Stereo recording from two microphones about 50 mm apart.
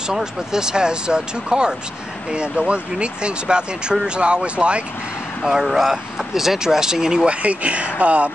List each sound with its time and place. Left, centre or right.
0.1 s speech: centre
5.4 s speech: centre
7.2 s speech: right